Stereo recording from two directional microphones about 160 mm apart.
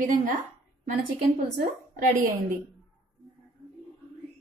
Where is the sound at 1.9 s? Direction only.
55° right (ahead or behind).